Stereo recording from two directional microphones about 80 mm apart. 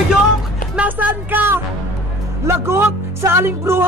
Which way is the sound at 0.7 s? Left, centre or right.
Right.